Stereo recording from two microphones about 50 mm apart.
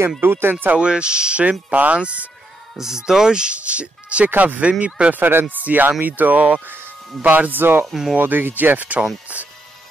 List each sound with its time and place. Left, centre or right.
0.2 s speech: right
0.7 s speech: centre
2.8 s speech: centre
5.1 s speech: right
7.8 s speech: centre
8.2 s speech: right